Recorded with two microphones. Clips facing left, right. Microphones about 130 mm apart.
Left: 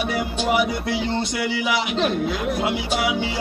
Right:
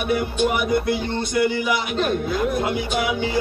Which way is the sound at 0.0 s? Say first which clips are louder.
Right 3 dB; 50° right (ahead or behind).